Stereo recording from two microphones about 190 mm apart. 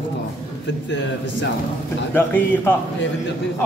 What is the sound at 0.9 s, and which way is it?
Speech, 70° left (ahead or behind).